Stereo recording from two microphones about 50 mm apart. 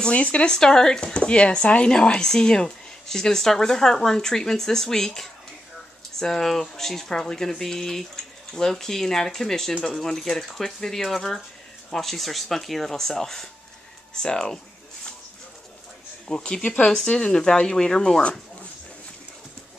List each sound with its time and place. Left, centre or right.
0.0 s speech: left
16.3 s speech: centre